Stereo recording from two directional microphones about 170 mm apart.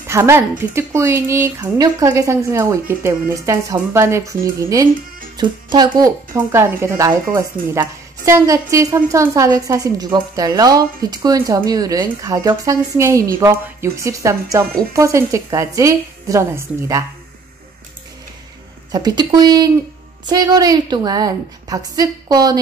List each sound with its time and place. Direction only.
0.0 s a woman's voice: 15° right (ahead or behind)
18.9 s a woman's voice: 25° right (ahead or behind)